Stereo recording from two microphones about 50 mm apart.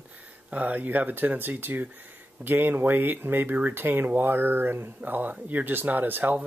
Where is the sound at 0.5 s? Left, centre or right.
Right.